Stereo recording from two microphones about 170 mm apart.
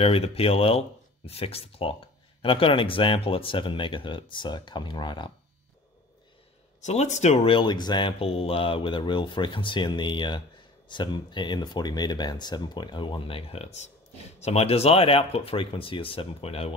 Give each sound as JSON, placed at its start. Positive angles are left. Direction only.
{"t": 0.0, "sound": "speech", "side_deg": 35}
{"t": 6.8, "sound": "speech", "side_deg": 40}